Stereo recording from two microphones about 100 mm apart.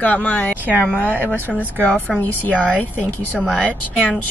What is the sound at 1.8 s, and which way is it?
Speech, 15° left (ahead or behind).